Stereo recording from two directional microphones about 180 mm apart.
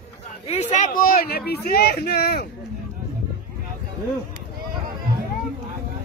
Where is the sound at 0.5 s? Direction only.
40° left (ahead or behind); by 2.4 s 60° left (ahead or behind).